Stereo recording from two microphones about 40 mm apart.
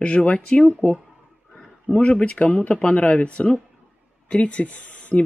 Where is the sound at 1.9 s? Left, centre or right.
Right.